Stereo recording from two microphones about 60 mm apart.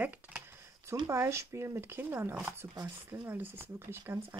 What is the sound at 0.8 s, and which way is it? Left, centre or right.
Speech, right.